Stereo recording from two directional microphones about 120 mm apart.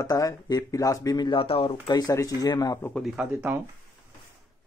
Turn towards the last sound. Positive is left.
turn(degrees=-10)  # may be behind; listen again after turning